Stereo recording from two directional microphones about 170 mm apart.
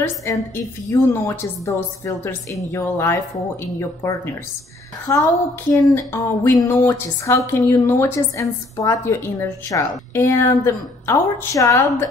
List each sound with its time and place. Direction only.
0.0 s speech: 15° left (ahead or behind)
5.0 s speech: 20° left (ahead or behind)